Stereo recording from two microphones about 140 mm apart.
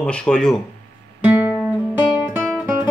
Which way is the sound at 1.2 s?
15° right (ahead or behind).